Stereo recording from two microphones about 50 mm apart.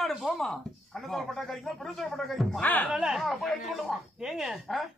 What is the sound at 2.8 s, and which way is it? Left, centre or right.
Speech, centre.